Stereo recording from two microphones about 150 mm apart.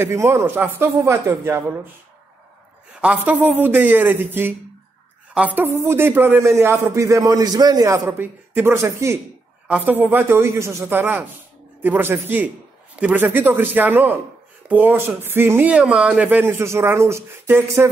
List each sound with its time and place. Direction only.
0.0 s a man's voice: 15° right (ahead or behind)
3.0 s a man's voice: 10° right (ahead or behind)